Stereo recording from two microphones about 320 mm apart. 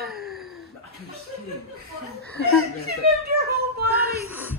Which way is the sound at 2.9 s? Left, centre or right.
Right.